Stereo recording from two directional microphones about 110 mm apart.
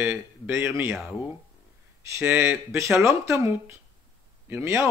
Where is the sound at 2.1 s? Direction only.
20° right (ahead or behind).